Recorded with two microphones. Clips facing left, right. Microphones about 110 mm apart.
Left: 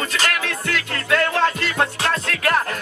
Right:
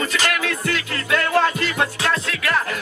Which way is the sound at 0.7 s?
50° left (ahead or behind).